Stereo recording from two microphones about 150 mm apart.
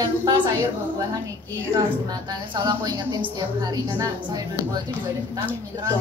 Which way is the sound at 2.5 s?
25° right (ahead or behind).